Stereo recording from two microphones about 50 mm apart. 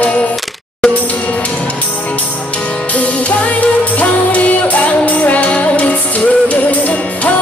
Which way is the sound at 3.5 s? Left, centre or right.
Left.